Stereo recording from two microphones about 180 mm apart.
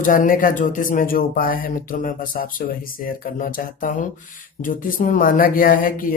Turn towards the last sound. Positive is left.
turn(degrees=50)  # may be behind; listen again after turning